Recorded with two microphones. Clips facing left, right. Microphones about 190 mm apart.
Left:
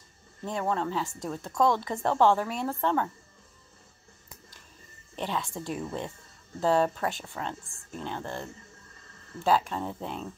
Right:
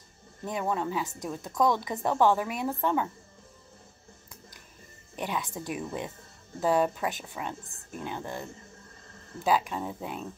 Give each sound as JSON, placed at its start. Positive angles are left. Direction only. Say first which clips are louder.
{"t": 0.5, "sound": "speech", "louder": "left 1 dB", "side_deg": -15}
{"t": 5.1, "sound": "a woman's voice", "louder": "left 1 dB", "side_deg": -15}